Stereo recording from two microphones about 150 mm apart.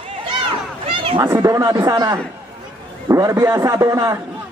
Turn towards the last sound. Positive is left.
turn(degrees=-20)  # may be behind; listen again after turning